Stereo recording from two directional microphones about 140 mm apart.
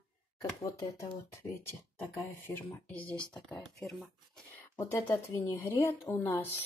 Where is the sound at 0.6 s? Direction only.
20° left (ahead or behind).